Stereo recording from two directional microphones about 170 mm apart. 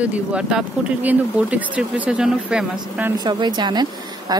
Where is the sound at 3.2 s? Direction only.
25° right (ahead or behind).